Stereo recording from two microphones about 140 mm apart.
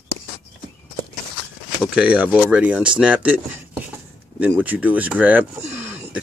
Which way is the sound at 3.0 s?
10° right (ahead or behind).